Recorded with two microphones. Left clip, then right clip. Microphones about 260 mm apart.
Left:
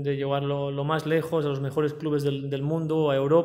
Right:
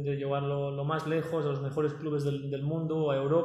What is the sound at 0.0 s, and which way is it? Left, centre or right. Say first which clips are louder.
A man's voice: left 5 dB; left.